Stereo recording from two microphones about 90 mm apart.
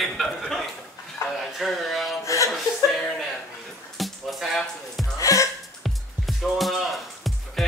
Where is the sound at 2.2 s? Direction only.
35° left (ahead or behind).